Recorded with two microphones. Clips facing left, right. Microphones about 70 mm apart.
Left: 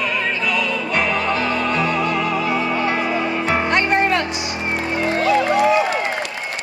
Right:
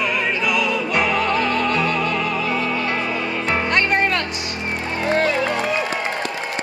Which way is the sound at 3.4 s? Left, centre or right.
Centre.